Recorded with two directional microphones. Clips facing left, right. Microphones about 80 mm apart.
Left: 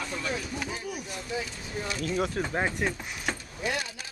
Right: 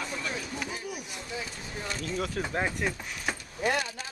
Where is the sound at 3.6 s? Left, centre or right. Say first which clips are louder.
Right 5 dB; right.